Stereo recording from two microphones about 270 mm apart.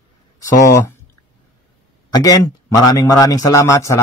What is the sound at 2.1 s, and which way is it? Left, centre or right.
Speech, centre.